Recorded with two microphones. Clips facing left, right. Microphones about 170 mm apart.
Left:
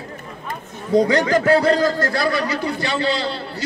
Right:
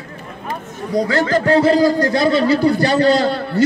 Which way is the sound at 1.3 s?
5° left (ahead or behind).